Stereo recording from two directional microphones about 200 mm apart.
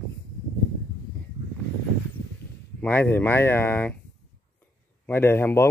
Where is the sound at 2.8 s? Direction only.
10° left (ahead or behind).